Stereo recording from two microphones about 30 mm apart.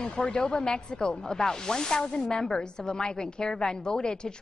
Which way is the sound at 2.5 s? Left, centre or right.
Left.